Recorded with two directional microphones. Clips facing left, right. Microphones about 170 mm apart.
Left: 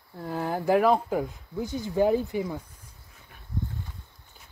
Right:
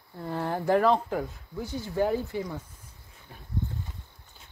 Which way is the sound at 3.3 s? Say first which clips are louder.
Right 6 dB; 30° right (ahead or behind).